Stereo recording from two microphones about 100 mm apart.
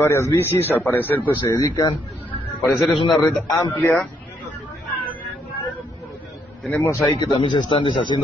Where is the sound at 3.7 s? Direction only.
25° left (ahead or behind).